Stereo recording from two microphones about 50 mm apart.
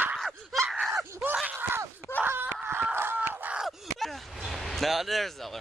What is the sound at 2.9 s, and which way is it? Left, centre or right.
Chicken, right.